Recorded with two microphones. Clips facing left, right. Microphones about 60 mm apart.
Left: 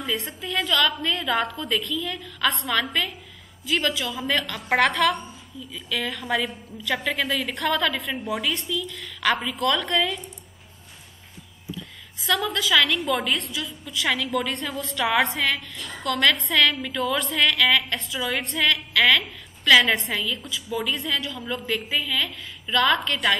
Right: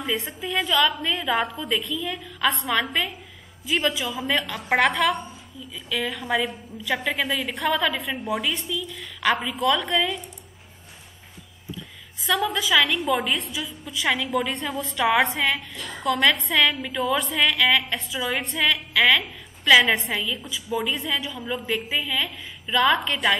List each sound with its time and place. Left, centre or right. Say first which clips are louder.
0.3 s a woman's voice: right 1 dB; centre
12.2 s a woman's voice: right 1 dB; centre
21.6 s a woman's voice: left 1 dB; centre